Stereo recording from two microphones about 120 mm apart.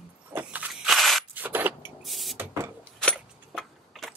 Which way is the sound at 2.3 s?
20° right (ahead or behind).